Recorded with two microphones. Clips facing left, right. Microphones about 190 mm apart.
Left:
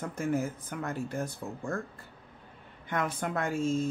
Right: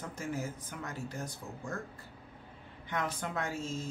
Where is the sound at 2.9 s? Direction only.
55° left (ahead or behind).